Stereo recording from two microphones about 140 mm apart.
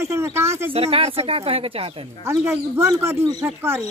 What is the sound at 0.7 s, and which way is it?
Speech, 45° right (ahead or behind).